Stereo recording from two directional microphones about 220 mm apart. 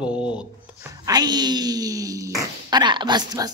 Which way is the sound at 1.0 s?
20° right (ahead or behind).